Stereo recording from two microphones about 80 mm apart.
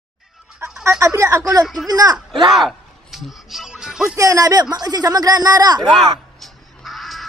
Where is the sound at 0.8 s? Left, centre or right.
Right.